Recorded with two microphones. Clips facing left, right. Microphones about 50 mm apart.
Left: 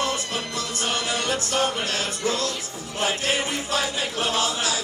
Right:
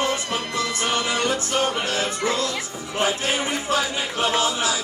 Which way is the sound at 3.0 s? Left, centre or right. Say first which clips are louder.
Right 1 dB; right.